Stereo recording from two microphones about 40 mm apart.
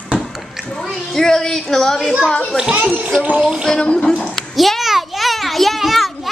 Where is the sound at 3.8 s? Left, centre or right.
Left.